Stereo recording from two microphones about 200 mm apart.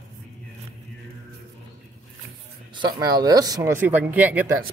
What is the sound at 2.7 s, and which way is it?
Speech, 20° right (ahead or behind).